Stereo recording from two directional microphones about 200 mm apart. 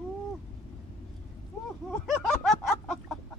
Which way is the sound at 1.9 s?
Centre (ahead or behind).